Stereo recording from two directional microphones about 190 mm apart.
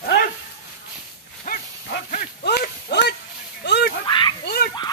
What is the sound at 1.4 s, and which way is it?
Dog, 45° left (ahead or behind).